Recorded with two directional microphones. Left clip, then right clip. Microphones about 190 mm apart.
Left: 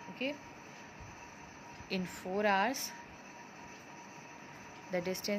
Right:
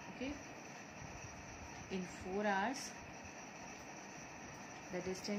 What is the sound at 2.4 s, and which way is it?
Speech, 55° left (ahead or behind).